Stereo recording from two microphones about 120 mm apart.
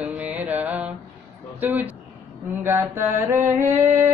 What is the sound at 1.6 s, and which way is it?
Speech, 15° right (ahead or behind).